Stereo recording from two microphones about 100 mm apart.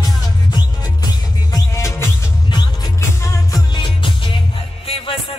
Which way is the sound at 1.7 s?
30° left (ahead or behind).